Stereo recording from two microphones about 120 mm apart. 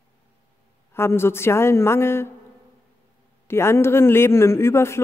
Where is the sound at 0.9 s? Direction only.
20° left (ahead or behind).